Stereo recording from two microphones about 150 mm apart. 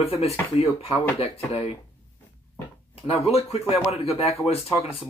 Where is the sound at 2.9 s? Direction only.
40° left (ahead or behind).